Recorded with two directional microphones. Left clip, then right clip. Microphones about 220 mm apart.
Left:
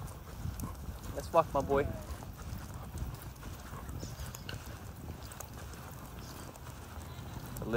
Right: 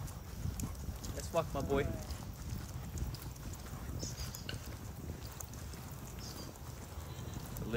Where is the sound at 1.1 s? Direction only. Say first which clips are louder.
Left 8 dB; 20° left (ahead or behind).